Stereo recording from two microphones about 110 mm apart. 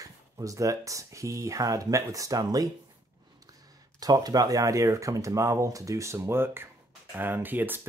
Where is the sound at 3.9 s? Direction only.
35° right (ahead or behind); by 7.8 s 20° right (ahead or behind).